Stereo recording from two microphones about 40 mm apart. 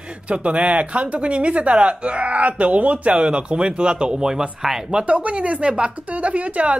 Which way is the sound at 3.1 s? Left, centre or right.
Right.